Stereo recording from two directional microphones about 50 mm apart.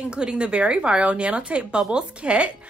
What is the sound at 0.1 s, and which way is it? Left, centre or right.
Speech, centre.